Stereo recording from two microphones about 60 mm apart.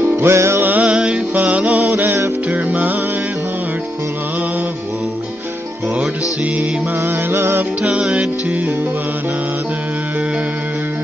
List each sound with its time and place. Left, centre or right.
0.0 s music: right
0.7 s music: right
7.1 s music: right
7.8 s music: centre